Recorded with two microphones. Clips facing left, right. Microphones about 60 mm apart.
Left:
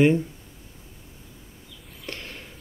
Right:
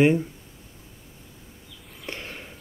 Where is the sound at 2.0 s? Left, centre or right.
Centre.